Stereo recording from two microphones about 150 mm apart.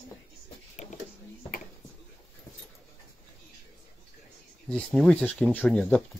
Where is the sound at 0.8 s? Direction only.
45° left (ahead or behind).